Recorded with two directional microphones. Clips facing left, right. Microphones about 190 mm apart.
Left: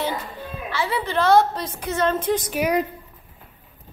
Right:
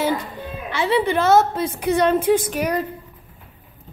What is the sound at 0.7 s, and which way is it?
Speech, 20° right (ahead or behind).